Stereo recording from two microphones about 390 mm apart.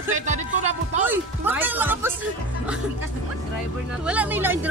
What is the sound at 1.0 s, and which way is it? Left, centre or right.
Speech, centre.